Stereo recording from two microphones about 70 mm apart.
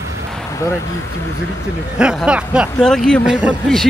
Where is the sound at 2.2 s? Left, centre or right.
Centre.